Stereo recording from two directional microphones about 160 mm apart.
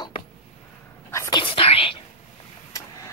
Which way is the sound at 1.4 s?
35° left (ahead or behind).